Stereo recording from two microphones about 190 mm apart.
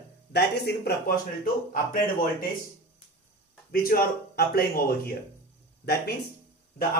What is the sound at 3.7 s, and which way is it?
A man's voice, 55° left (ahead or behind).